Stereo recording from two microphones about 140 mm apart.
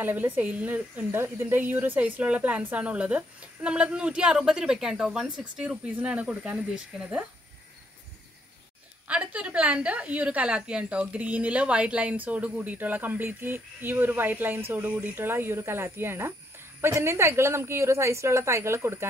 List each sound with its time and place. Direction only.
0.0 s speech: 15° right (ahead or behind)
9.0 s a woman's voice: 10° right (ahead or behind)